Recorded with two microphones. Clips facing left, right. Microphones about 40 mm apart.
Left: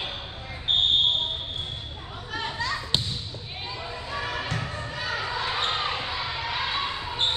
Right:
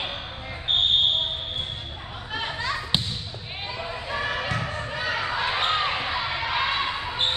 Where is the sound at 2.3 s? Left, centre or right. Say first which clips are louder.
Right 1 dB; right.